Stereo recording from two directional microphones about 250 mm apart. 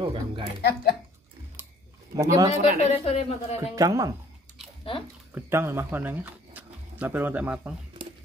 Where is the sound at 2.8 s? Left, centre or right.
Left.